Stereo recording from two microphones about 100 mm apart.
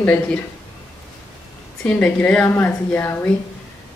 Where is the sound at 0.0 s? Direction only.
15° left (ahead or behind).